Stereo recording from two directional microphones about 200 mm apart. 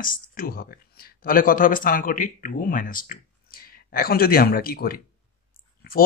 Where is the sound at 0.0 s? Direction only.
45° left (ahead or behind).